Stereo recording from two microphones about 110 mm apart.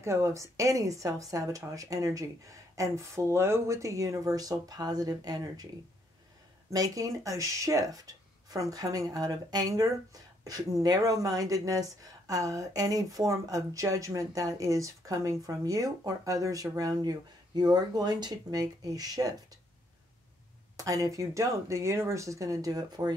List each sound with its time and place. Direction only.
0.0 s a woman's voice: 25° right (ahead or behind)
6.7 s speech: 35° right (ahead or behind)
20.7 s a woman's voice: 30° right (ahead or behind)